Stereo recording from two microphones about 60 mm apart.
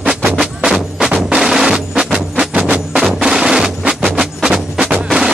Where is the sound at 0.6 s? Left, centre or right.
Centre.